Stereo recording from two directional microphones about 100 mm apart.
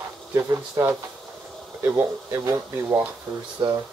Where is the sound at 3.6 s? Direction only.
40° right (ahead or behind).